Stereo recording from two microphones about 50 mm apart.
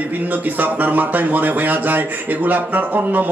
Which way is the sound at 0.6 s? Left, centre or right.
Right.